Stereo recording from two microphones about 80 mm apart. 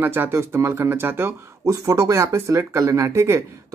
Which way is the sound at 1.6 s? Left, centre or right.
Right.